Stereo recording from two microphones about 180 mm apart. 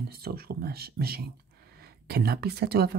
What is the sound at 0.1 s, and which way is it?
Speech, 60° right (ahead or behind).